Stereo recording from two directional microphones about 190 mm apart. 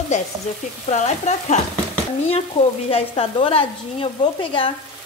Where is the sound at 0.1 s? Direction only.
40° left (ahead or behind).